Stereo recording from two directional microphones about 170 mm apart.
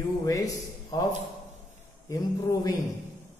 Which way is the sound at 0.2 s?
20° left (ahead or behind).